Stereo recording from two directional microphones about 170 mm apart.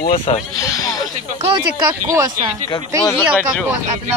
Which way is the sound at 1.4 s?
35° right (ahead or behind).